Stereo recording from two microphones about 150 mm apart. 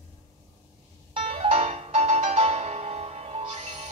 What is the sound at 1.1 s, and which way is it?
Music, 40° right (ahead or behind).